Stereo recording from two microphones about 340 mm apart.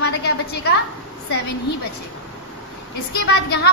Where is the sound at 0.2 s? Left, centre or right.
Left.